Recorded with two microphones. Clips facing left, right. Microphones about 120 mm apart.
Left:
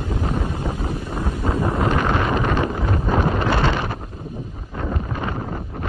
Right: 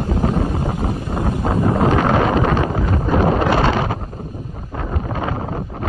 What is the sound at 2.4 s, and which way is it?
Wind noise, 40° right (ahead or behind).